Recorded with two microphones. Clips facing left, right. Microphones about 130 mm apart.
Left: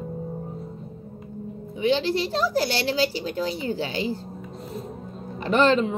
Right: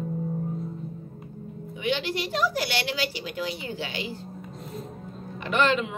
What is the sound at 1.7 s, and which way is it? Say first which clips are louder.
Speech: left 6 dB; 35° left (ahead or behind).